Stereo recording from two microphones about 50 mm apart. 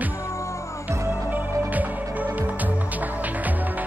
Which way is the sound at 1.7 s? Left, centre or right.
Right.